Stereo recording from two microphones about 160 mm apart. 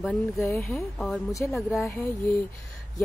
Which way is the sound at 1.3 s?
20° left (ahead or behind).